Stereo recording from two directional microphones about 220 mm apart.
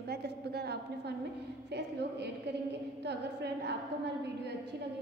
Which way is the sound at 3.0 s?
50° right (ahead or behind).